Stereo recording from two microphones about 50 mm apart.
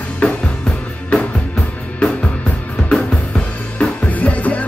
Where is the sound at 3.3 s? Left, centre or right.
Left.